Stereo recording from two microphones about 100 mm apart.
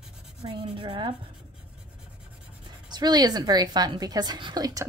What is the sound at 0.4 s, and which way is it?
Speech, 70° right (ahead or behind).